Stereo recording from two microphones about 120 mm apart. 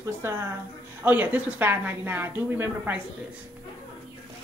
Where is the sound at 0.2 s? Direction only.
20° right (ahead or behind).